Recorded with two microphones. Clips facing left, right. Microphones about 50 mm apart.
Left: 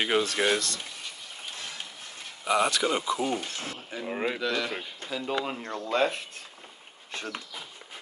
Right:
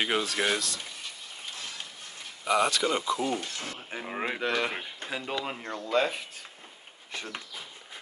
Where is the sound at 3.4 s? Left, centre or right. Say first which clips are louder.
Left 1 dB; left.